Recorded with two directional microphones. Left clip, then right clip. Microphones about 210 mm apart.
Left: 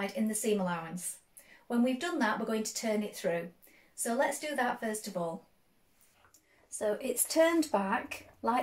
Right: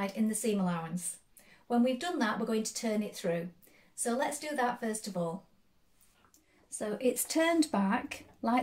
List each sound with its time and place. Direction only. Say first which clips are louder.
0.0 s speech: even; 20° right (ahead or behind)
6.8 s speech: right 1 dB; 45° right (ahead or behind)